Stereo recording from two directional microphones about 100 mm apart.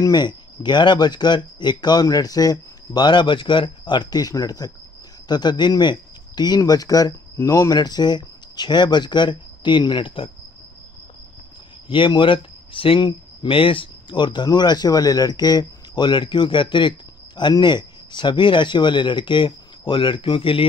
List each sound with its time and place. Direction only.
0.0 s speech: 45° left (ahead or behind); by 10.3 s 60° left (ahead or behind)
11.9 s speech: 55° left (ahead or behind)